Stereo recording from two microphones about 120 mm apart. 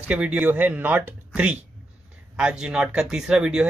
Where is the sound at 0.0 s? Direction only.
10° right (ahead or behind).